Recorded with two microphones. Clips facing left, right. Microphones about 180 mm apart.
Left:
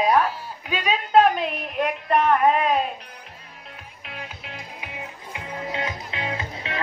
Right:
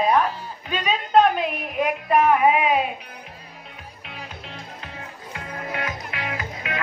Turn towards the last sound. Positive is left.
turn(degrees=30)  # may be behind; listen again after turning